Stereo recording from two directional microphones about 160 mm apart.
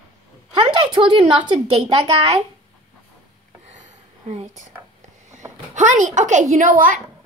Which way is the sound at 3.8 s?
50° right (ahead or behind).